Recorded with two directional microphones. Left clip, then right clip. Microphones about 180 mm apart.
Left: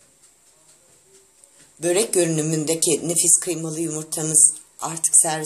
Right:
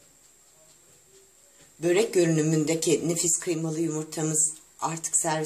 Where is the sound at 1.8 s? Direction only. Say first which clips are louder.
Left 3 dB; 15° right (ahead or behind).